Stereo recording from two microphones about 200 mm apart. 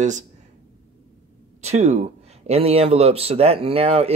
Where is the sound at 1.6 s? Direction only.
35° right (ahead or behind).